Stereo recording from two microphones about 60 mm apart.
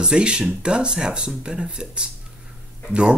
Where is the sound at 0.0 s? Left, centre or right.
Centre.